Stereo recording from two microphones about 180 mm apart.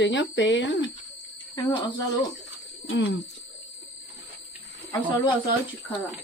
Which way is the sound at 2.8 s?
80° left.